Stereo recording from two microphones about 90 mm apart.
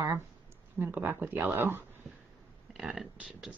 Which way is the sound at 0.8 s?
20° right (ahead or behind).